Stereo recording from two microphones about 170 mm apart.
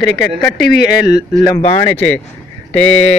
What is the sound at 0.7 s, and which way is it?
Speech, 70° left (ahead or behind).